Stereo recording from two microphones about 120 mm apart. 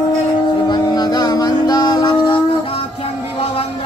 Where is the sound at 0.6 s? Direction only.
35° left (ahead or behind).